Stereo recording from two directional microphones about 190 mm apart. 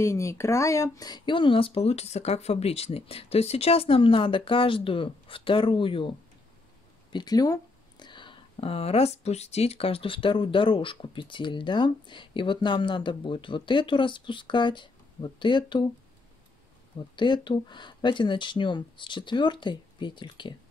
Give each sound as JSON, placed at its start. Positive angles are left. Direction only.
{"t": 0.0, "sound": "speech", "side_deg": 15}
{"t": 17.1, "sound": "speech", "side_deg": 25}